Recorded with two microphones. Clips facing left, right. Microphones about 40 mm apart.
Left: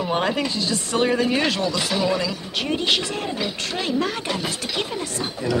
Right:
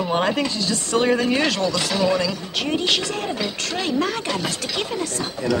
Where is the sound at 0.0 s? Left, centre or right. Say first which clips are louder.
Right 2 dB; centre.